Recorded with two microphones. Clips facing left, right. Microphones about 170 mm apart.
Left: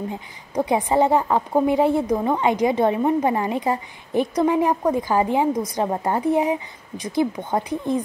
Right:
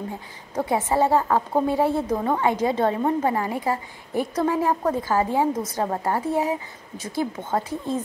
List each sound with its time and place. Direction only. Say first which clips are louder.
0.1 s a woman's voice: left 3 dB; 15° left (ahead or behind)